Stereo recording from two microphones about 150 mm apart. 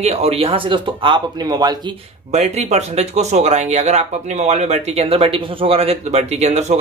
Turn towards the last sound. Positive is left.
turn(degrees=-45)  # may be behind; listen again after turning